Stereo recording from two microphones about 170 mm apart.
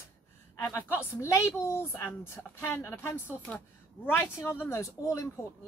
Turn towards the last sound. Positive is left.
turn(degrees=20)  # may be behind; listen again after turning